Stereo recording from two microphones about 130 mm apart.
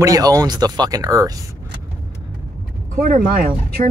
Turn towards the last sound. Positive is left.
turn(degrees=-90)